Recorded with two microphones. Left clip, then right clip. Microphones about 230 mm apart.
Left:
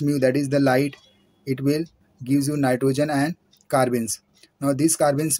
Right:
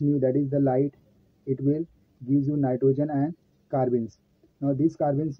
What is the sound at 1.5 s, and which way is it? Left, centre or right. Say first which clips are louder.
Speech: left 3 dB; left.